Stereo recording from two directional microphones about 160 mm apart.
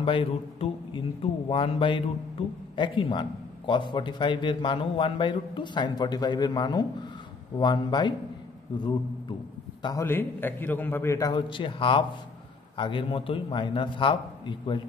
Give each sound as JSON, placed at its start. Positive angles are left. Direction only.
{"t": 0.0, "sound": "a man's voice", "side_deg": 35}
{"t": 9.8, "sound": "a man's voice", "side_deg": 25}
{"t": 10.0, "sound": "a man's voice", "side_deg": 15}